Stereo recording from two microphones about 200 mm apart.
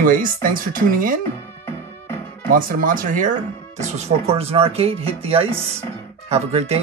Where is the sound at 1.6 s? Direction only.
10° left (ahead or behind).